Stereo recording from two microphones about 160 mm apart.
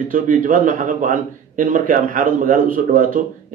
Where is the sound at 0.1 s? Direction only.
55° right (ahead or behind).